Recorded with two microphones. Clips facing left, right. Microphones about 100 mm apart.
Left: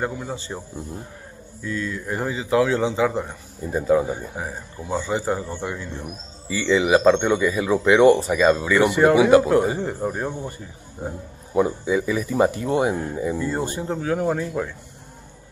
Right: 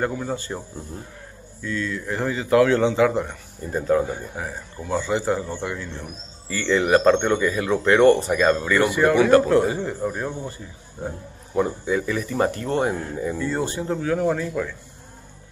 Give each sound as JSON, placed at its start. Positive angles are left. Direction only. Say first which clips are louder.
{"t": 0.0, "sound": "speech", "louder": "right 2 dB", "side_deg": 5}
{"t": 1.6, "sound": "speech", "louder": "right 1 dB", "side_deg": 15}
{"t": 3.1, "sound": "speech", "louder": "right 2 dB", "side_deg": 5}
{"t": 5.5, "sound": "speech", "louder": "even", "side_deg": 20}
{"t": 11.0, "sound": "speech", "louder": "even", "side_deg": 10}